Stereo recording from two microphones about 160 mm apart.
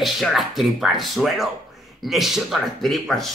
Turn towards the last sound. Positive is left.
turn(degrees=0)  # may be behind; listen again after turning